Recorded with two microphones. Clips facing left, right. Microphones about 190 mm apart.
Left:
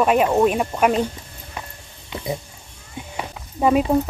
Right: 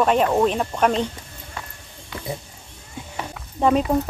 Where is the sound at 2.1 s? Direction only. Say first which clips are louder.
Left 4 dB; 20° left (ahead or behind).